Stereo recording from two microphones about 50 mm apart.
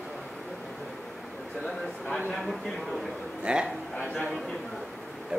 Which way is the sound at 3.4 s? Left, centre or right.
Centre.